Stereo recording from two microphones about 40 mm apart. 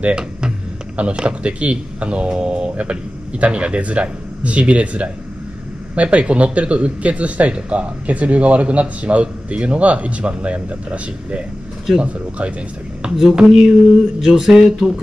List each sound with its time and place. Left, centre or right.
0.1 s speech: right
2.7 s speech: right
13.0 s speech: centre
13.5 s speech: centre